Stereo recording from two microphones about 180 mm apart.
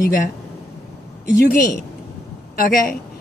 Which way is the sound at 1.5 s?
50° left (ahead or behind).